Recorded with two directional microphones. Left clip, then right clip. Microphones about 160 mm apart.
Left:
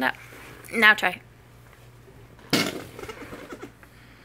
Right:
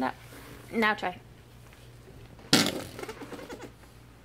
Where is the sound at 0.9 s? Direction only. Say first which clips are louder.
Left 8 dB; 15° left (ahead or behind).